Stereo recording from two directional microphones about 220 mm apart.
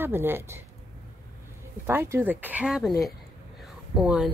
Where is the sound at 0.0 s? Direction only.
10° right (ahead or behind).